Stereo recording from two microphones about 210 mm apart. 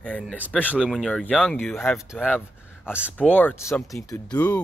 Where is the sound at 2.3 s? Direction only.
10° left (ahead or behind).